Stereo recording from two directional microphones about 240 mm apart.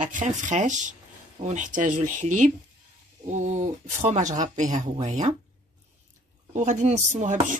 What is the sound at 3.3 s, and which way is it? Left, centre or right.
Speech, right.